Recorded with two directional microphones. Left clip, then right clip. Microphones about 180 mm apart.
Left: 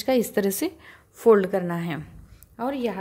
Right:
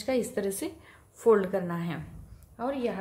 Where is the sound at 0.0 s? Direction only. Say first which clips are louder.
Left 6 dB; 50° left (ahead or behind).